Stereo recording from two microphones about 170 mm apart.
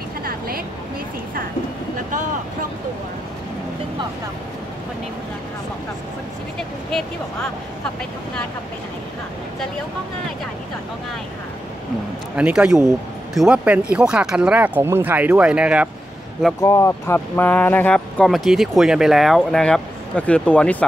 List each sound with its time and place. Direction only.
0.2 s a sound: 60° right (ahead or behind)
12.4 s speech: 5° right (ahead or behind)
16.6 s speech: 15° left (ahead or behind)